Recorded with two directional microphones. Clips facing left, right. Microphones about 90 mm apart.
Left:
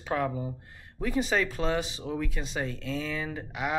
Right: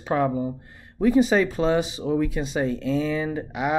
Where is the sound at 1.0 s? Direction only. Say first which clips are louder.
Right 9 dB; 15° right (ahead or behind).